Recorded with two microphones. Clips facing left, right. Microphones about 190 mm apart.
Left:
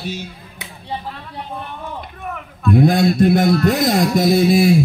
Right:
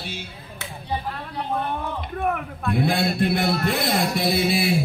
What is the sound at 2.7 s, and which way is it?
Speech, 45° left (ahead or behind).